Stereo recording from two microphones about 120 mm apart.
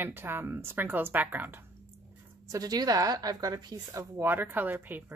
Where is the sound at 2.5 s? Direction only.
30° right (ahead or behind).